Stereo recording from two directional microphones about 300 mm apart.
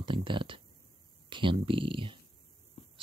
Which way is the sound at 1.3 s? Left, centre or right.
Centre.